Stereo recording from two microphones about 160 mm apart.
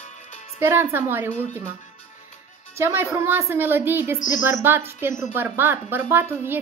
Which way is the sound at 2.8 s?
15° right (ahead or behind).